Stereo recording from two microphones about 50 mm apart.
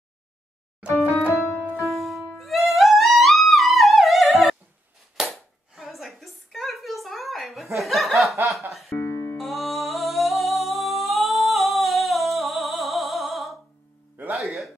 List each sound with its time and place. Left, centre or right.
0.8 s music: right
1.8 s music: centre
5.2 s a sound: centre
5.8 s a sound: centre
8.5 s music: centre
8.9 s music: left
9.4 s humming: centre